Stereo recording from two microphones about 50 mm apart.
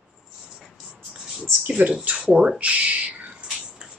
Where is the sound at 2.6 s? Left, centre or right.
Right.